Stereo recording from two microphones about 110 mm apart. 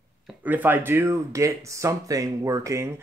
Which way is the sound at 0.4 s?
15° right (ahead or behind).